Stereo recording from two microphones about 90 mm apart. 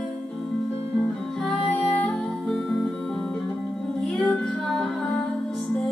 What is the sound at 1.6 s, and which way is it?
Music, 15° left (ahead or behind).